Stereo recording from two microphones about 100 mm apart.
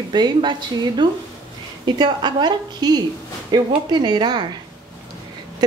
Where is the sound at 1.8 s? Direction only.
45° right (ahead or behind).